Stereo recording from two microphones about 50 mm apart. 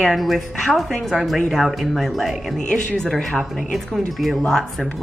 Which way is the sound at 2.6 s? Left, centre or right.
Centre.